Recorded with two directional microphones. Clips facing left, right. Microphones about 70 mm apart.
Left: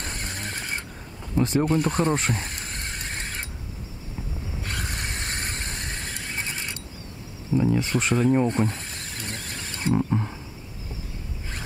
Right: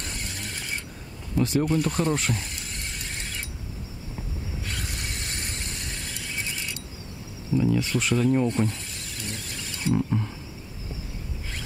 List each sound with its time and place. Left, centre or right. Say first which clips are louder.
0.0 s horse: left 2 dB; left
1.3 s vehicle: left 1 dB; left
4.6 s squeal: left 5 dB; left
7.5 s a sound: left 1 dB; left